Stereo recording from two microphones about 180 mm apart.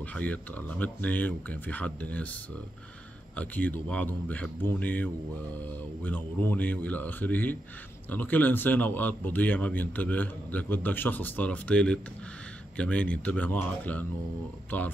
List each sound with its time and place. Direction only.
0.0 s a man's voice: 10° left (ahead or behind)
3.3 s a man's voice: 10° left (ahead or behind)